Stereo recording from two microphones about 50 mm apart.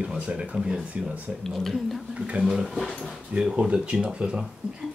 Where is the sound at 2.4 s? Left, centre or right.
Centre.